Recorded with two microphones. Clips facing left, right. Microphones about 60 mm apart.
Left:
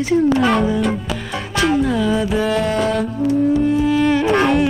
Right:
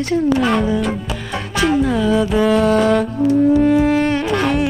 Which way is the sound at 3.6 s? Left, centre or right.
Right.